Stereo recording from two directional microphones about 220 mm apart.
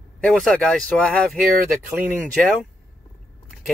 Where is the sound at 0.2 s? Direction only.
Centre (ahead or behind).